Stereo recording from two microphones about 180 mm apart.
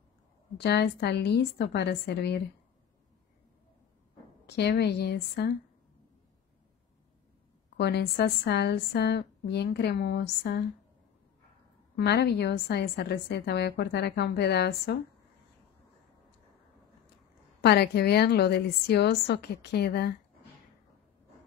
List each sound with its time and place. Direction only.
0.6 s a woman's voice: 65° left (ahead or behind)
4.5 s a woman's voice: 65° left (ahead or behind)
7.7 s a woman's voice: 65° left (ahead or behind)
12.0 s a woman's voice: 65° left (ahead or behind)
17.6 s a woman's voice: 65° left (ahead or behind)